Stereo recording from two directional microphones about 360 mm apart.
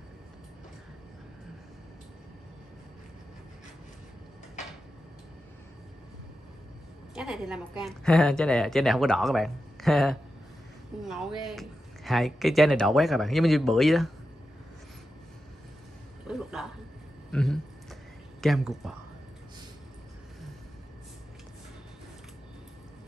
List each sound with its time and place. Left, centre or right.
7.2 s speech: centre
16.3 s a sound: centre
18.4 s speech: centre